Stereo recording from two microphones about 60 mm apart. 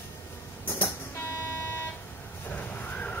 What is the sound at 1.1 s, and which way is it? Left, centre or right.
Vehicle, left.